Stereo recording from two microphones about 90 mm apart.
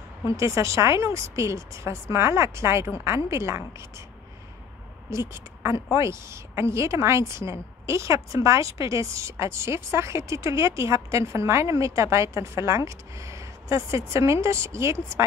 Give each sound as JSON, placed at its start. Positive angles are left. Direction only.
{"t": 0.3, "sound": "a woman's voice", "side_deg": -35}
{"t": 5.1, "sound": "a woman's voice", "side_deg": -30}